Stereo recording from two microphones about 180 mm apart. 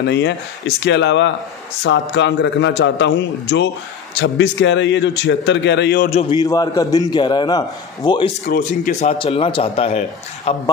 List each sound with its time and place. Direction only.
0.0 s a man's voice: 70° left (ahead or behind)
6.0 s speech: 35° left (ahead or behind)
6.3 s a man's voice: 20° left (ahead or behind)
8.5 s speech: 50° left (ahead or behind)
9.2 s speech: 30° left (ahead or behind)